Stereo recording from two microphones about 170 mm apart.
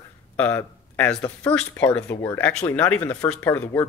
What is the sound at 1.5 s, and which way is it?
Speech, 5° left (ahead or behind).